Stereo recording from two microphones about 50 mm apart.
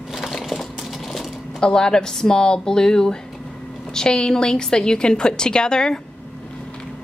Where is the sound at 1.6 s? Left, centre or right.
Centre.